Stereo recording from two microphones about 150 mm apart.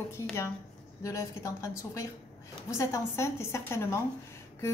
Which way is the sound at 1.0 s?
20° left (ahead or behind).